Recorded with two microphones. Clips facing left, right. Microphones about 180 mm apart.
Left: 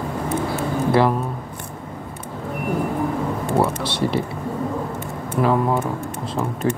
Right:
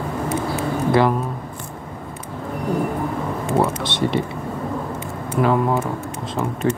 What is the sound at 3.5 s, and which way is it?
Speech, 5° left (ahead or behind).